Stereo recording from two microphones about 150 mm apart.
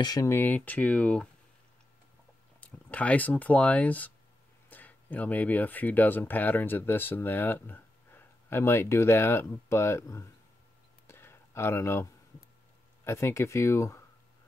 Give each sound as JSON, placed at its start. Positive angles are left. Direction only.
{"t": 0.0, "sound": "speech", "side_deg": 25}
{"t": 2.6, "sound": "speech", "side_deg": 10}
{"t": 11.1, "sound": "a sound", "side_deg": 15}
{"t": 13.0, "sound": "speech", "side_deg": 15}